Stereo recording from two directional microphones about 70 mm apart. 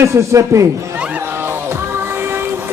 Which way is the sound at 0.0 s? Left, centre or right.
Right.